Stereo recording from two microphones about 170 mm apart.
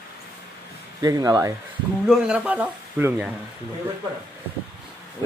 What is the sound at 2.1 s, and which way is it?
Speech, 5° right (ahead or behind).